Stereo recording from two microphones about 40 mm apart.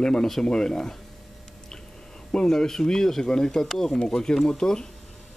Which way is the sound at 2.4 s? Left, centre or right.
Centre.